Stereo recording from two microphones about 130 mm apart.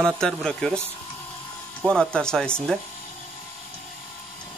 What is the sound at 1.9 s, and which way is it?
Speech, 5° left (ahead or behind).